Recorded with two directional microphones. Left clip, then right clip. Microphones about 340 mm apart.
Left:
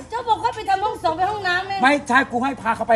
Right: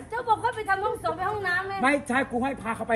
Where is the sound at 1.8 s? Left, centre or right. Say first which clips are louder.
Left 9 dB; centre.